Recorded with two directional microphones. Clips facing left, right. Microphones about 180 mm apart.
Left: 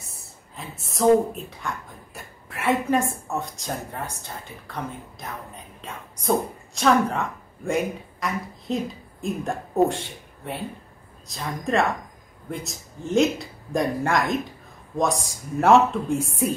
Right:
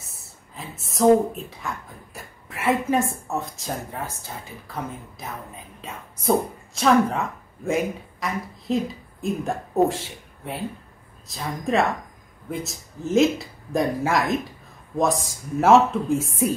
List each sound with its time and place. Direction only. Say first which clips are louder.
0.0 s speech: left 1 dB; centre (ahead or behind)